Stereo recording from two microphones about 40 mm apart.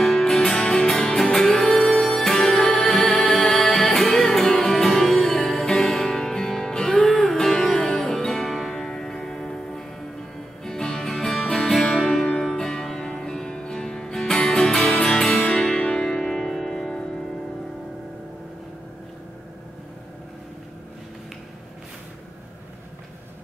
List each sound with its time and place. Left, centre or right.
0.0 s music: centre
15.4 s music: left
15.9 s music: centre